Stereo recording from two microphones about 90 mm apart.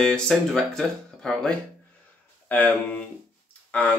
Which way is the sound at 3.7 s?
15° left (ahead or behind).